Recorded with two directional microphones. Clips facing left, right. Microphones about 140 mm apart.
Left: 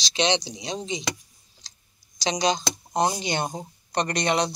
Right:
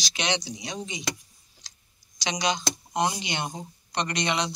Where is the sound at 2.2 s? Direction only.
35° left (ahead or behind).